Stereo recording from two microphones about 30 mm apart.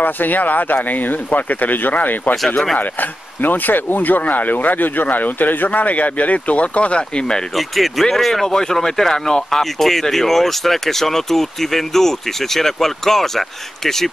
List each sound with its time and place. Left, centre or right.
0.0 s speech: left
0.8 s speech: left
4.2 s speech: left
5.0 s speech: left
5.7 s speech: left
7.0 s speech: left
7.5 s speech: centre
8.5 s speech: left